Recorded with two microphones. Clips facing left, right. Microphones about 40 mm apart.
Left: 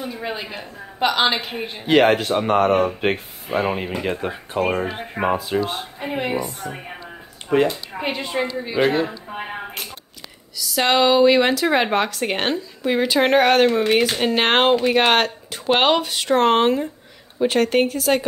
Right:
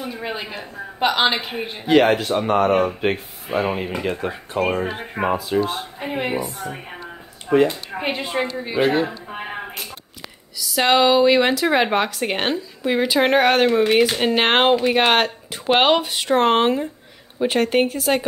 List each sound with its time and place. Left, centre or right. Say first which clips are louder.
0.0 s speech: even; centre
1.9 s speech: even; left
2.7 s speech: even; centre
3.5 s a woman's voice: even; centre
7.5 s speech: right 2 dB; centre
7.9 s speech: right 1 dB; centre
10.6 s speech: right 1 dB; centre